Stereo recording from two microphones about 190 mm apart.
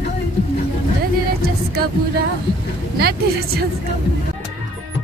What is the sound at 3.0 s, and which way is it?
Vehicle, 55° right (ahead or behind).